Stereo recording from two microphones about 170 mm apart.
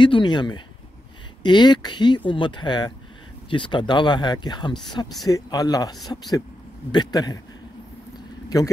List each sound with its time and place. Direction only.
0.0 s speech: 25° left (ahead or behind)